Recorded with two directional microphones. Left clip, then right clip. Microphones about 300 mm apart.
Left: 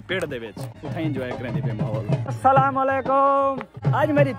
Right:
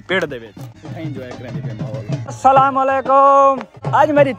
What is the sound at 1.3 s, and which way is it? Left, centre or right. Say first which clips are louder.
Speech: left 1 dB; left.